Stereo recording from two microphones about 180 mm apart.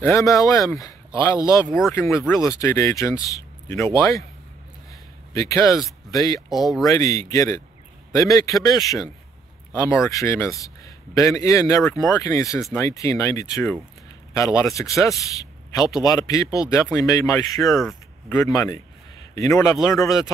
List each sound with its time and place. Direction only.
0.0 s speech: 15° left (ahead or behind)
5.3 s speech: 15° left (ahead or behind)